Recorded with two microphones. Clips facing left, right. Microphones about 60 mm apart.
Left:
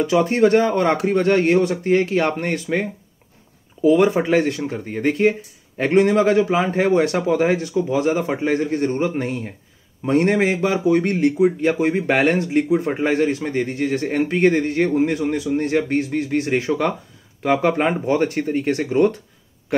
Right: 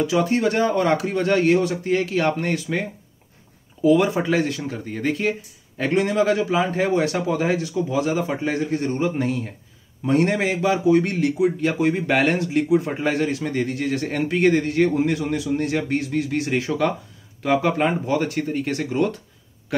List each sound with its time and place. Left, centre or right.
0.0 s speech: left
11.8 s a man's voice: left